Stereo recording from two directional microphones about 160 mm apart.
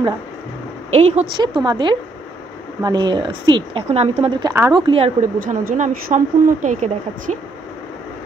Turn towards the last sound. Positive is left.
turn(degrees=-50)  # may be behind; listen again after turning